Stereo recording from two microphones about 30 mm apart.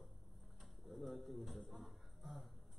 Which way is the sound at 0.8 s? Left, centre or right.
Centre.